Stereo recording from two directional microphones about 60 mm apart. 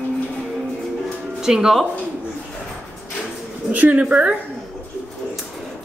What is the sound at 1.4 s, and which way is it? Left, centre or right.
Speech, centre.